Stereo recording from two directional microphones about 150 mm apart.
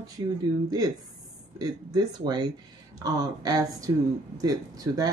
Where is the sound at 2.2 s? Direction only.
30° right (ahead or behind).